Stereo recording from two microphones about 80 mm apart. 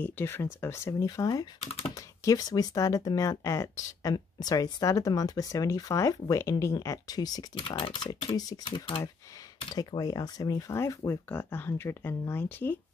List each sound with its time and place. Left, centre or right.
0.0 s speech: left
1.0 s speech: left
7.5 s speech: left
9.8 s speech: left
10.7 s speech: left